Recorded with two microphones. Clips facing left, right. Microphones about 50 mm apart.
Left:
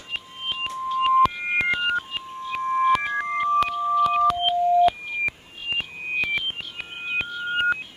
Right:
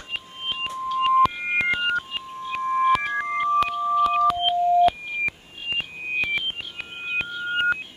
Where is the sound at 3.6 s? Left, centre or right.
Centre.